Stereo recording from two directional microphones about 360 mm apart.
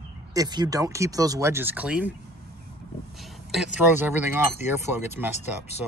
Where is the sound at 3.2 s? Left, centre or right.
Centre.